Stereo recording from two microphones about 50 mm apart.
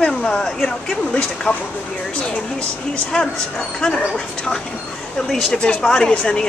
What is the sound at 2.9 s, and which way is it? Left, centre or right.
A woman's voice, centre.